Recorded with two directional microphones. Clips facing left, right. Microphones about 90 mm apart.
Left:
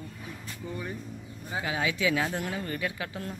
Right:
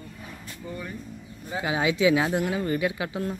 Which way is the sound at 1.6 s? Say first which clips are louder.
Right 7 dB; 20° right (ahead or behind).